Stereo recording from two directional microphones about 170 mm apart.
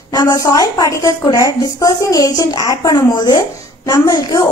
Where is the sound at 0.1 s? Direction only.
25° left (ahead or behind).